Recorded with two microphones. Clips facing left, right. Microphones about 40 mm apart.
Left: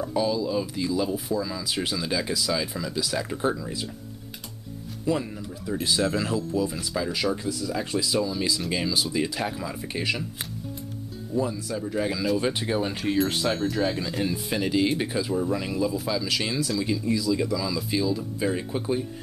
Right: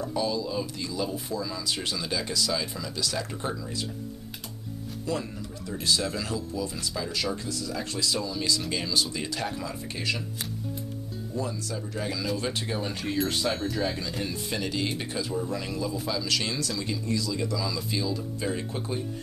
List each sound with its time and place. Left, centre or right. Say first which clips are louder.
0.0 s speech: left 3 dB; centre
5.1 s speech: left 5 dB; centre
11.3 s speech: left 6 dB; centre